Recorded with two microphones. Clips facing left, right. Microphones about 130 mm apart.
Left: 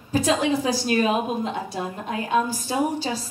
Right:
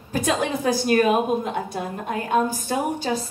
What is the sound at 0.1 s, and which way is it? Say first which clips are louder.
A woman's voice: left 2 dB; 55° right (ahead or behind).